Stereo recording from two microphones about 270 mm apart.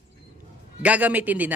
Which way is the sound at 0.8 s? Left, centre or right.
Centre.